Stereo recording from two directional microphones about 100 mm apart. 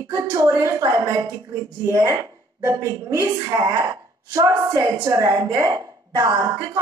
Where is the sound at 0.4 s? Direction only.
25° right (ahead or behind).